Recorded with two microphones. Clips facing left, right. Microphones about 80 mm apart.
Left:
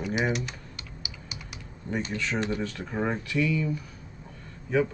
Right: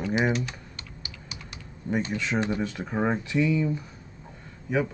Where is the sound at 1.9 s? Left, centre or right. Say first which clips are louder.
Right 3 dB; centre.